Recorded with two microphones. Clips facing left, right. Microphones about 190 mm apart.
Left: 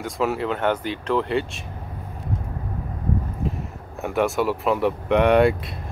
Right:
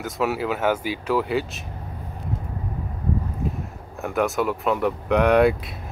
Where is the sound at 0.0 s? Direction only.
Centre (ahead or behind).